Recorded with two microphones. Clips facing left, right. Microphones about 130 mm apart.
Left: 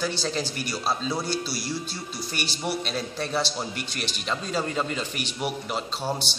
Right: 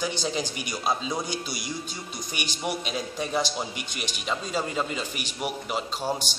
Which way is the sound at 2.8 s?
10° right (ahead or behind).